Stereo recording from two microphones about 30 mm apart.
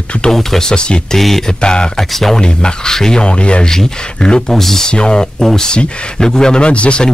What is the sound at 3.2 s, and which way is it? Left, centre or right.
Speech, left.